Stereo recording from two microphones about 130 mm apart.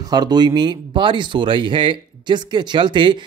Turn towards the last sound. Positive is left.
turn(degrees=-40)  # may be behind; listen again after turning